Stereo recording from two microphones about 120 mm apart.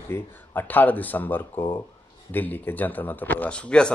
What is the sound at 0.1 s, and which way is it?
A man's voice, 15° left (ahead or behind).